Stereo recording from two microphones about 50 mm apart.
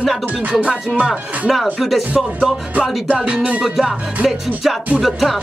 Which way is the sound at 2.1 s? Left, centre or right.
Right.